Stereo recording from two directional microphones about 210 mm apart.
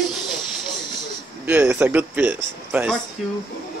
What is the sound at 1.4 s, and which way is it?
Speech, 10° right (ahead or behind).